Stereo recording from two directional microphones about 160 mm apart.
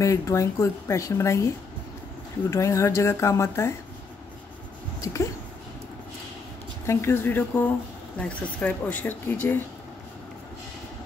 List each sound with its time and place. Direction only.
0.0 s speech: 20° left (ahead or behind)
2.5 s speech: 20° left (ahead or behind)
5.0 s speech: 20° left (ahead or behind)
6.9 s speech: 15° left (ahead or behind)